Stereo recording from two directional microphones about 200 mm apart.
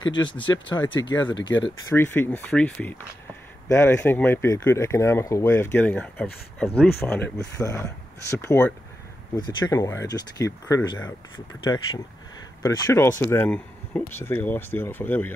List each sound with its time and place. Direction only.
0.1 s speech: 25° left (ahead or behind)
2.0 s speech: 10° left (ahead or behind)
9.4 s speech: 20° left (ahead or behind)